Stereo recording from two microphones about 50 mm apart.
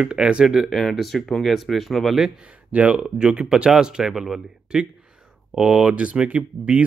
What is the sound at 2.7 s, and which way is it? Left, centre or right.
Speech, right.